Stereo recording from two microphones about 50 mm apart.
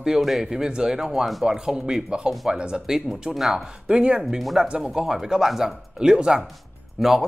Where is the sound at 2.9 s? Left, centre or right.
Centre.